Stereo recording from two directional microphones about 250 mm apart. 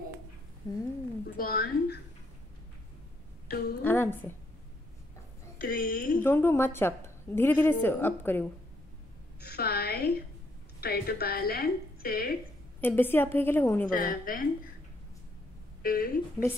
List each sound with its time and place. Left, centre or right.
0.7 s a woman's voice: centre
1.2 s speech: left
3.4 s a woman's voice: left
3.8 s a woman's voice: centre
5.6 s a woman's voice: left
6.2 s a woman's voice: centre
9.4 s a woman's voice: left
12.8 s a woman's voice: centre
13.8 s a woman's voice: left
15.8 s speech: left